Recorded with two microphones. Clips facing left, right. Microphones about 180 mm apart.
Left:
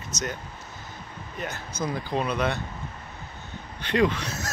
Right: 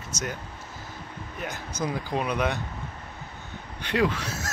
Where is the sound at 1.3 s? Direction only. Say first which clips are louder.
Left 1 dB; 10° right (ahead or behind).